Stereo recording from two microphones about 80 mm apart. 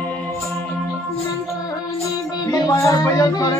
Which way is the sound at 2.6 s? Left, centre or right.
Left.